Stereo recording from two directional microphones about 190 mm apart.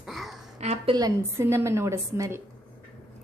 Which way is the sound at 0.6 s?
35° right (ahead or behind).